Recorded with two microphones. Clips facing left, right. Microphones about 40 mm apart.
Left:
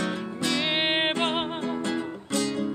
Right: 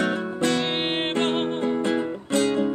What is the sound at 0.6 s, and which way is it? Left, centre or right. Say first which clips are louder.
Music: even; centre.